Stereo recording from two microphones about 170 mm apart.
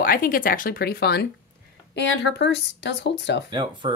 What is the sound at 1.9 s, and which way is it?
Speech, 90° left.